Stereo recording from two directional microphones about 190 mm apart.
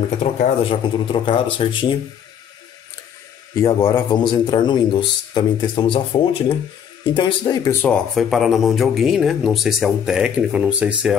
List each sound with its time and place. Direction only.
0.2 s a man's voice: 35° left (ahead or behind)
3.5 s a man's voice: 15° left (ahead or behind)
7.8 s speech: 5° left (ahead or behind)